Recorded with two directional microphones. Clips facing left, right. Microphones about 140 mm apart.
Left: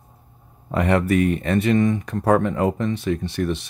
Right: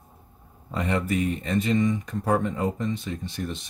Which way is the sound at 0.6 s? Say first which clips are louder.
Left 7 dB; 65° left (ahead or behind).